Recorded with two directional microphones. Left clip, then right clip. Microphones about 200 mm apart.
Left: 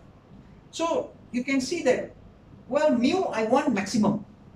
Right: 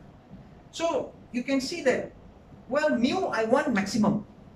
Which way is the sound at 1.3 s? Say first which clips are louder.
Left 1 dB; 15° left (ahead or behind).